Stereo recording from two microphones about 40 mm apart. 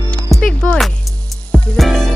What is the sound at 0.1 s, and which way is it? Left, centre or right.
Music, left.